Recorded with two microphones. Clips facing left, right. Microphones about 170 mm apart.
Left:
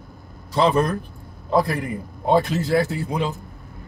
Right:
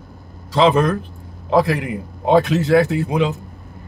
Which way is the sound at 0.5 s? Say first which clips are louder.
Right 4 dB; 90° right.